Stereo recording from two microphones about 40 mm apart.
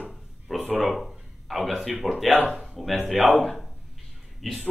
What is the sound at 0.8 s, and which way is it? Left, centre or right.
Speech, centre.